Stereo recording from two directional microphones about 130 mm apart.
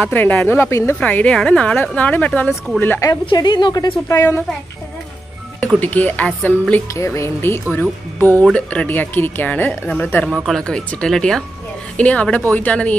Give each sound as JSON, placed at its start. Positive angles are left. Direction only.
{"t": 0.0, "sound": "a woman's voice", "side_deg": 15}
{"t": 3.1, "sound": "a woman's voice", "side_deg": 30}
{"t": 5.8, "sound": "a woman's voice", "side_deg": 15}